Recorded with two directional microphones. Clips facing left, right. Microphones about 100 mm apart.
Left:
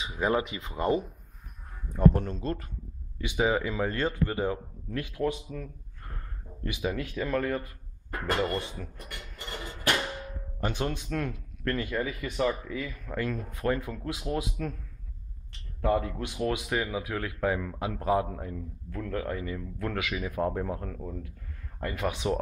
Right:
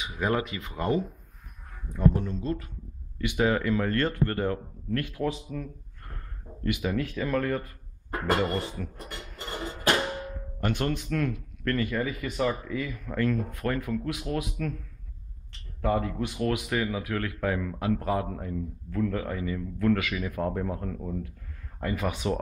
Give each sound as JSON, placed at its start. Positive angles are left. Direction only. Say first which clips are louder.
{"t": 0.0, "sound": "speech", "louder": "even", "side_deg": 20}
{"t": 2.0, "sound": "speech", "louder": "left 1 dB", "side_deg": 50}
{"t": 3.2, "sound": "a man's voice", "louder": "right 1 dB", "side_deg": 10}
{"t": 6.8, "sound": "a man's voice", "louder": "left 2 dB", "side_deg": 5}
{"t": 8.9, "sound": "music", "louder": "right 3 dB", "side_deg": -30}
{"t": 10.6, "sound": "a man's voice", "louder": "right 2 dB", "side_deg": 15}
{"t": 11.7, "sound": "a man's voice", "louder": "right 3 dB", "side_deg": 5}
{"t": 13.1, "sound": "a man's voice", "louder": "right 5 dB", "side_deg": 10}
{"t": 13.6, "sound": "speech", "louder": "even", "side_deg": 25}
{"t": 16.0, "sound": "a man's voice", "louder": "right 2 dB", "side_deg": 5}
{"t": 18.5, "sound": "a man's voice", "louder": "right 5 dB", "side_deg": 0}